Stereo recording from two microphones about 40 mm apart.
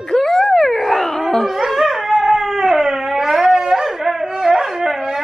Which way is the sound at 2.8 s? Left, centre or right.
Centre.